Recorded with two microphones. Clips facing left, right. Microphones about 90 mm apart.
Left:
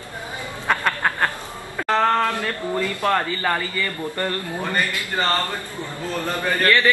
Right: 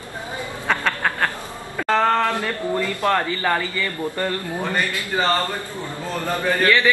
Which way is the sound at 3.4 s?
Centre (ahead or behind).